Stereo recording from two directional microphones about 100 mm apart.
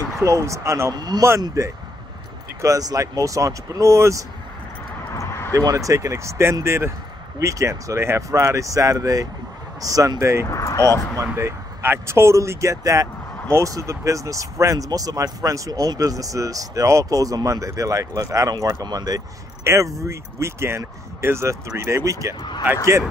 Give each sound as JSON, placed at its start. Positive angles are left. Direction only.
{"t": 0.2, "sound": "speech", "side_deg": -30}
{"t": 0.9, "sound": "speech", "side_deg": -40}
{"t": 5.1, "sound": "a sound", "side_deg": 30}
{"t": 5.5, "sound": "speech", "side_deg": -35}
{"t": 10.4, "sound": "speech", "side_deg": 35}
{"t": 11.3, "sound": "speech", "side_deg": -25}
{"t": 19.6, "sound": "speech", "side_deg": -30}